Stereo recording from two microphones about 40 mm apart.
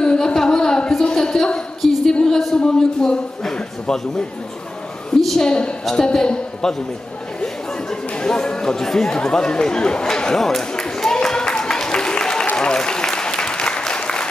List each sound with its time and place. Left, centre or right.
0.0 s a sound: centre
1.8 s a sound: centre
2.2 s a man's voice: centre
5.4 s a man's voice: left
7.9 s chatter: centre
12.5 s applause: centre